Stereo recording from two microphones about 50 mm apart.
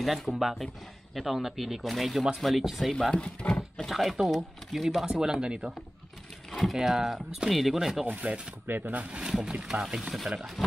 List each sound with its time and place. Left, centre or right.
0.0 s speech: centre
3.1 s speech: left
3.8 s speech: centre
5.0 s speech: centre
6.5 s speech: centre
8.1 s speech: right
8.6 s speech: right
9.0 s speech: right; by 10.3 s centre